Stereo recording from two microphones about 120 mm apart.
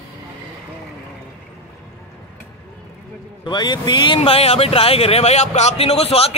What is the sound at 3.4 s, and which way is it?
Speech, 40° left (ahead or behind).